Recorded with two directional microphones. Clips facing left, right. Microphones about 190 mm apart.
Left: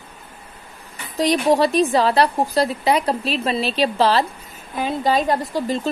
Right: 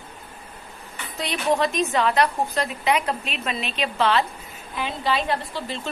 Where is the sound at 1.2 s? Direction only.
35° left (ahead or behind).